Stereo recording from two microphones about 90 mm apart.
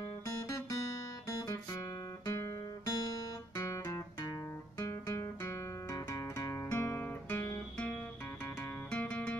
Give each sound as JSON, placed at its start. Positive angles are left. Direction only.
{"t": 1.3, "sound": "music", "side_deg": 45}
{"t": 2.2, "sound": "guitar", "side_deg": 35}
{"t": 8.9, "sound": "music", "side_deg": 15}